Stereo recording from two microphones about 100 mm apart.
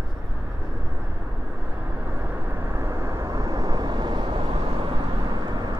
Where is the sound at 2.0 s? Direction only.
20° right (ahead or behind).